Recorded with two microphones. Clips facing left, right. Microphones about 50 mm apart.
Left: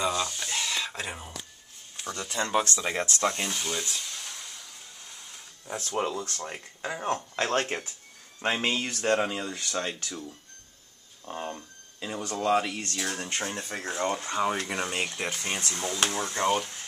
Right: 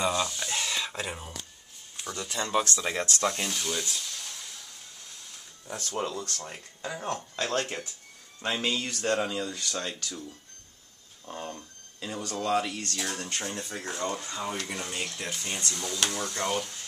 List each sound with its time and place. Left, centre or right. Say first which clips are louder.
0.4 s a sound: even; centre
1.0 s speech: even; centre
5.7 s speech: left 3 dB; centre
7.3 s speech: left 1 dB; left
11.2 s speech: left 3 dB; centre
14.3 s speech: left 6 dB; left